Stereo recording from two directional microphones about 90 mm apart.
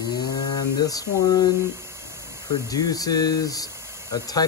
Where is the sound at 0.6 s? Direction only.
45° left (ahead or behind).